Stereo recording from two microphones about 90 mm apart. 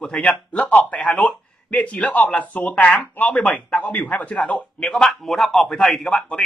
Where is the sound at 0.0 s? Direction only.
10° left (ahead or behind).